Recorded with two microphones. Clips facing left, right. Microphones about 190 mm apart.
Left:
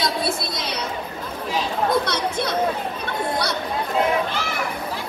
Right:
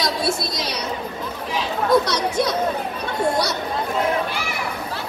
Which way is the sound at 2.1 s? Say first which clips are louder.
Right 3 dB; 55° left (ahead or behind).